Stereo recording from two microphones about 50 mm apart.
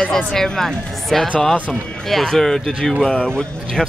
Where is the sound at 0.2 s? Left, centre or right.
Centre.